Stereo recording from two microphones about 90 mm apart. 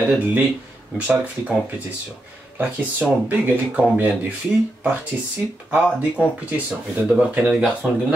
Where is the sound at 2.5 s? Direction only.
20° right (ahead or behind).